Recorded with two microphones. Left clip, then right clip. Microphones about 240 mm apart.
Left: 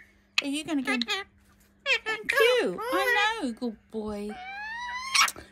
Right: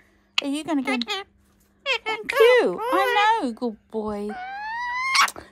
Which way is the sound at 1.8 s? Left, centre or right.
Centre.